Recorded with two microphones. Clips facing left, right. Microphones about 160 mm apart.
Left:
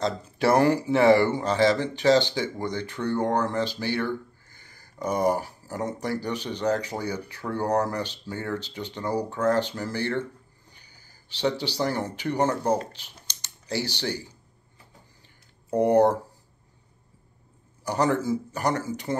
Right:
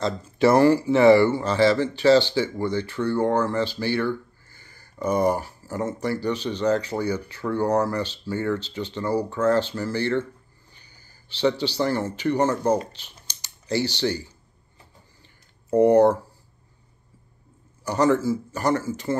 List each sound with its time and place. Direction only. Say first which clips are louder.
0.0 s speech: right 4 dB; 10° left (ahead or behind)
4.6 s a sound: right 2 dB; 15° left (ahead or behind)
5.0 s speech: right 2 dB; 10° left (ahead or behind)
15.7 s speech: right 4 dB; 10° left (ahead or behind)
17.8 s speech: right 4 dB; 15° left (ahead or behind)